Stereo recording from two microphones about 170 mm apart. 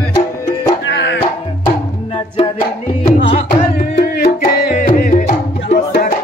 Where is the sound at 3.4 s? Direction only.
55° left (ahead or behind).